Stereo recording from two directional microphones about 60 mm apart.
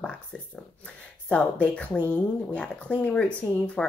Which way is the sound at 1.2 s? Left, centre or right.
Left.